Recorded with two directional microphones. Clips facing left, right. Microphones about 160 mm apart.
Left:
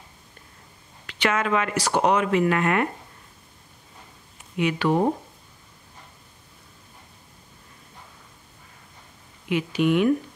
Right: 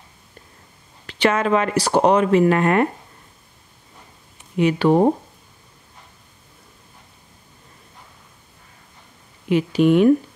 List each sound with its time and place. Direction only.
1.0 s speech: 30° right (ahead or behind)
4.6 s speech: 35° right (ahead or behind)
9.5 s speech: 35° right (ahead or behind)